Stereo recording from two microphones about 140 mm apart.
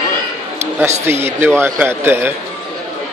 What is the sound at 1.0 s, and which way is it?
Speech, 15° right (ahead or behind).